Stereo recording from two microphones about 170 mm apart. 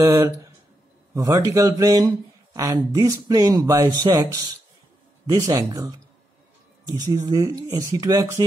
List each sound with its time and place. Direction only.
0.0 s speech: 20° right (ahead or behind)